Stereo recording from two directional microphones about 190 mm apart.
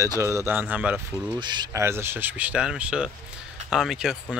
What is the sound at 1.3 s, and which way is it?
Speech, 25° right (ahead or behind).